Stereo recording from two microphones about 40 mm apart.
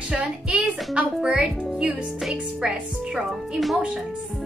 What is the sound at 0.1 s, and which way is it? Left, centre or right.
A child's voice, right.